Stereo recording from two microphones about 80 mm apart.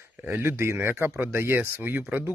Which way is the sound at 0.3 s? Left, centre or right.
Right.